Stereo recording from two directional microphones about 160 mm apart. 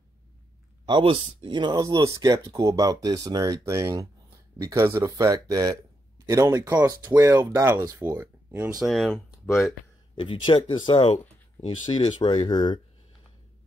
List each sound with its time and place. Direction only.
0.8 s speech: 30° right (ahead or behind); by 8.7 s 15° right (ahead or behind)
8.7 s speech: centre (ahead or behind)
10.1 s speech: 30° left (ahead or behind)